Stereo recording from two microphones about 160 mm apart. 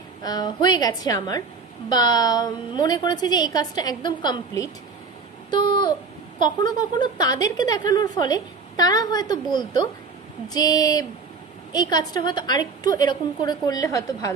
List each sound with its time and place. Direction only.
0.2 s a woman's voice: 25° left (ahead or behind)
5.5 s a sound: 30° left (ahead or behind)
6.4 s a woman's voice: 25° left (ahead or behind)